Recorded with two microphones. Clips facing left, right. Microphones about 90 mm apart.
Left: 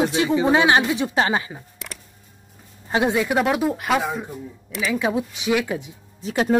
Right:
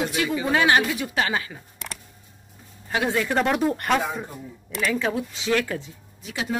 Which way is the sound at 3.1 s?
10° left (ahead or behind).